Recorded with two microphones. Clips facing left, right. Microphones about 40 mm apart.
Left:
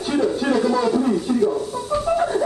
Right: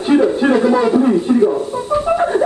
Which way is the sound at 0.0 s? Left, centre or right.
Right.